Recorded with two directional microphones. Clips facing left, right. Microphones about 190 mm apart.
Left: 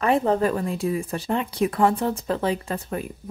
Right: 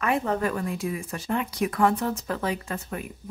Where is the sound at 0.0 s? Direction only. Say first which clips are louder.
Left 5 dB; 35° left (ahead or behind).